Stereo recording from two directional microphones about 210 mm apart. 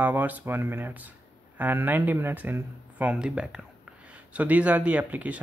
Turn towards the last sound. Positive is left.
turn(degrees=-5)  # may be behind; listen again after turning